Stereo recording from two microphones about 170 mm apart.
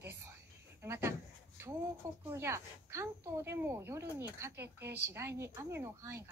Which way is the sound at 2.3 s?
15° right (ahead or behind).